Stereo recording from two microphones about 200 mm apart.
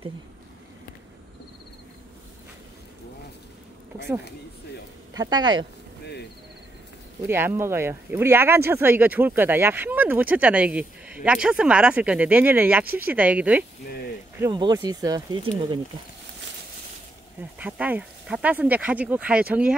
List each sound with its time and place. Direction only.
5.1 s speech: 20° right (ahead or behind)
7.2 s speech: 10° right (ahead or behind)
14.4 s speech: 20° right (ahead or behind)
17.4 s speech: 10° right (ahead or behind)